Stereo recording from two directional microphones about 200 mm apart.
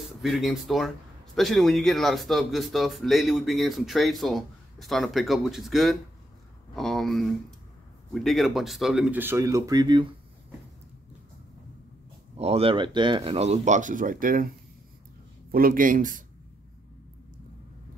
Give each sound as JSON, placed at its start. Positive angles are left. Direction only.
{"t": 0.2, "sound": "speech", "side_deg": 0}
{"t": 12.4, "sound": "speech", "side_deg": -30}
{"t": 15.5, "sound": "speech", "side_deg": -45}